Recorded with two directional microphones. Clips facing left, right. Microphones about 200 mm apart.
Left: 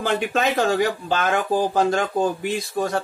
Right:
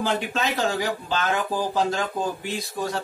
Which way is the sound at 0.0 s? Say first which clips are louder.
Left 4 dB; 55° left (ahead or behind).